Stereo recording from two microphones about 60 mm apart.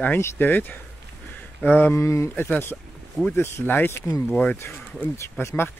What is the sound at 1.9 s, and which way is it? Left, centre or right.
Speech, left.